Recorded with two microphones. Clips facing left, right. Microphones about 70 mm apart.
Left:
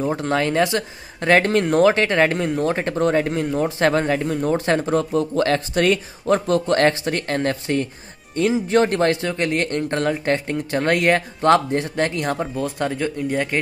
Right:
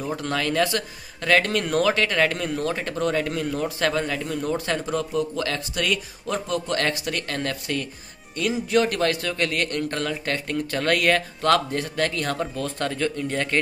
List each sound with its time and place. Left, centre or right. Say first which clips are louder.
0.0 s a man's voice: left 6 dB; left; by 13.6 s centre